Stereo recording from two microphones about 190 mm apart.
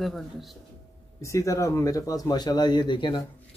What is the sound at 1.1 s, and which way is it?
Speech, 15° left (ahead or behind).